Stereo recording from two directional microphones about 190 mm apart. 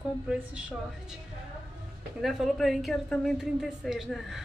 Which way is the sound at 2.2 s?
Centre (ahead or behind).